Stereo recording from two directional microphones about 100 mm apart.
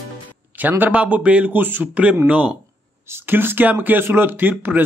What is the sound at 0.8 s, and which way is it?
A man's voice, 15° right (ahead or behind).